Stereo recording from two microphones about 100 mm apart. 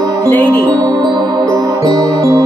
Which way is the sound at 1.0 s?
40° right (ahead or behind).